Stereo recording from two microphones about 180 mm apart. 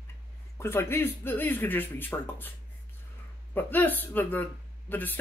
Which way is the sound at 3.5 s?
10° left (ahead or behind).